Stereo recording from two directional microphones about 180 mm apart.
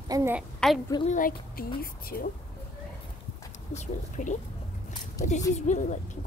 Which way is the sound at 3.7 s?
40° left (ahead or behind).